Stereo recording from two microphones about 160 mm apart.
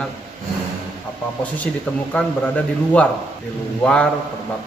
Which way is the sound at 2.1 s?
10° left (ahead or behind).